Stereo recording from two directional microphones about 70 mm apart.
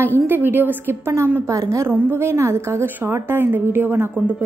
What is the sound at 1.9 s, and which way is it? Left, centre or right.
A woman's voice, right.